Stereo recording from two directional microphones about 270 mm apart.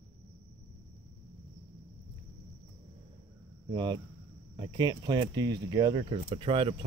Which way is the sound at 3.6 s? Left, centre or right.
Centre.